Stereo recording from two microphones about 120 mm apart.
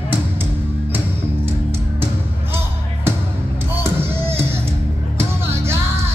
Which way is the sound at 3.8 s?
20° right (ahead or behind).